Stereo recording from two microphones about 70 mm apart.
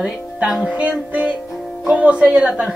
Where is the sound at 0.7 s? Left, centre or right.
Centre.